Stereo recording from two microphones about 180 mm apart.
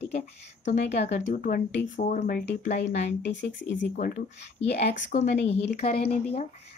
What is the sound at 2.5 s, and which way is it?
Speech, 70° left (ahead or behind).